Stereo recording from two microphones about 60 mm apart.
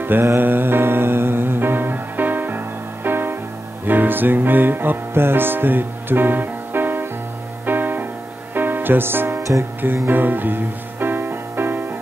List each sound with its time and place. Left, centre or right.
0.0 s music: right